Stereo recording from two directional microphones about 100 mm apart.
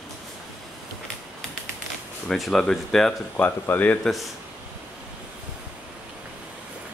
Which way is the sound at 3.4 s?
20° left (ahead or behind).